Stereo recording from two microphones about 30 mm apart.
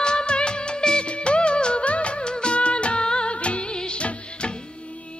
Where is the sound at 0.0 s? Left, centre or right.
Left.